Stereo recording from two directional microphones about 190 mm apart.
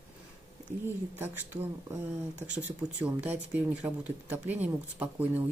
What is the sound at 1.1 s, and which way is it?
Speech, 10° right (ahead or behind).